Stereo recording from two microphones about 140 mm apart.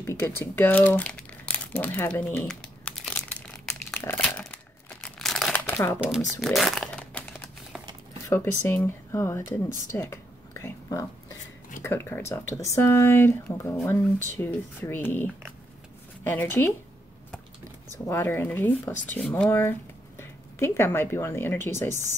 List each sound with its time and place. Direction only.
0.0 s speech: 15° left (ahead or behind)
2.4 s crumpling: 5° left (ahead or behind)
5.5 s crumpling: 15° left (ahead or behind)
6.0 s speech: centre (ahead or behind)
8.3 s speech: 15° left (ahead or behind)
18.0 s speech: 15° left (ahead or behind)
20.2 s speech: 20° left (ahead or behind)